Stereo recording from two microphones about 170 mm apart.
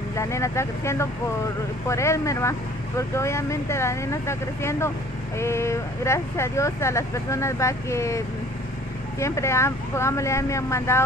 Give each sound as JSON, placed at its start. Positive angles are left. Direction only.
{"t": 0.1, "sound": "speech", "side_deg": 15}
{"t": 9.2, "sound": "speech", "side_deg": 15}